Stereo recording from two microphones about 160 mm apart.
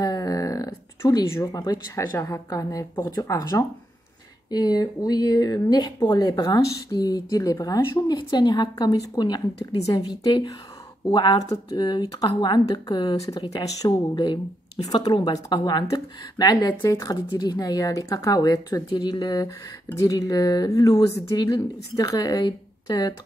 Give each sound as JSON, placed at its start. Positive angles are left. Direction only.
{"t": 0.0, "sound": "speech", "side_deg": 25}